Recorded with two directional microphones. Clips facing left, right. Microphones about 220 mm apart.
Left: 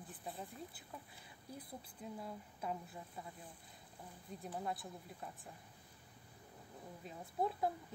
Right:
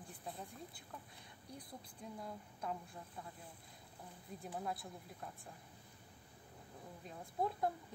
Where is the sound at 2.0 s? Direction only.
5° left (ahead or behind).